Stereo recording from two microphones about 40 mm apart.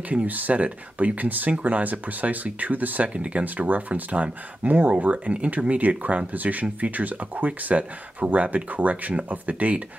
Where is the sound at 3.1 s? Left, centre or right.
Right.